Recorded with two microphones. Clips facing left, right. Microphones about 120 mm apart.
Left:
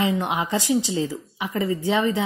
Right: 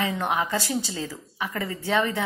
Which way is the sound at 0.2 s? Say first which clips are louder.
Left 1 dB; 15° left (ahead or behind).